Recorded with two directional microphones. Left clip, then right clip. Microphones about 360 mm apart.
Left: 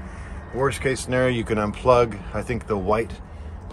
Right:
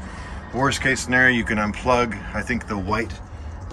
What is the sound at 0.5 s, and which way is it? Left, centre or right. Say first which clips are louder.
A man's voice: right 2 dB; centre.